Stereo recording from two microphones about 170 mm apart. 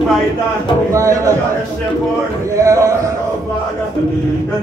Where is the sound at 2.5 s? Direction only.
20° right (ahead or behind).